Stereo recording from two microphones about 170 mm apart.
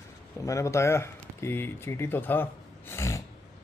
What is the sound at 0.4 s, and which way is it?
Speech, 20° left (ahead or behind).